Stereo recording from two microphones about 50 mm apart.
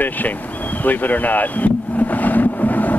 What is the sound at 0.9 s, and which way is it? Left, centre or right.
Speech, left.